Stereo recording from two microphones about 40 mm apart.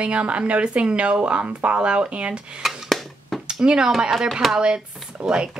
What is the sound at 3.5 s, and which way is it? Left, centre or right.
Speech, right.